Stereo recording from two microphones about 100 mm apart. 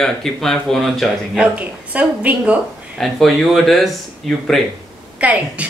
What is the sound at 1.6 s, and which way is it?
Speech, 15° right (ahead or behind).